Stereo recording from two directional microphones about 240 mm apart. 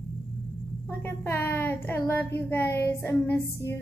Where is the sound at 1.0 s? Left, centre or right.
Centre.